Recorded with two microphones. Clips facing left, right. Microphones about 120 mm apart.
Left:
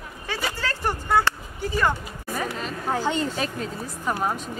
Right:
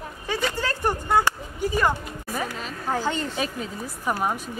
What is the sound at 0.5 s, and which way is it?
Speech, 15° right (ahead or behind).